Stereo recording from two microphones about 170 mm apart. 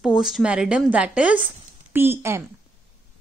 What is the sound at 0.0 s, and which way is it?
A woman's voice, 5° right (ahead or behind).